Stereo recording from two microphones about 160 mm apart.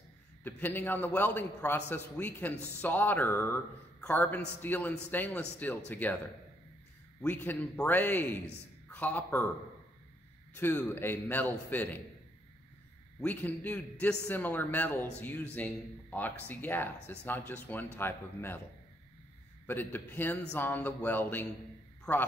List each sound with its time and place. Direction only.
0.4 s speech: 10° left (ahead or behind)
7.2 s speech: 10° left (ahead or behind)
10.5 s speech: 10° left (ahead or behind)
13.2 s speech: 10° left (ahead or behind)
19.6 s speech: 10° left (ahead or behind)